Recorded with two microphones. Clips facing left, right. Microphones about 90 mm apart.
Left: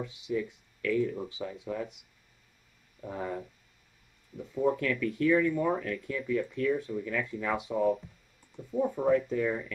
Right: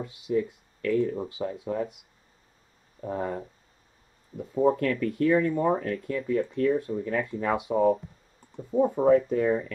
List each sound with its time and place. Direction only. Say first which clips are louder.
0.0 s speech: right 4 dB; 45° right (ahead or behind)
0.9 s speech: right 4 dB; 25° right (ahead or behind)
3.0 s speech: right 5 dB; 35° right (ahead or behind)
7.4 s speech: right 5 dB; 5° right (ahead or behind)
7.7 s speech: right 5 dB; 35° right (ahead or behind)